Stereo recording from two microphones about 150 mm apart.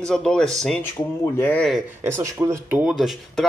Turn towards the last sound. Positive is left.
turn(degrees=0)  # may be behind; listen again after turning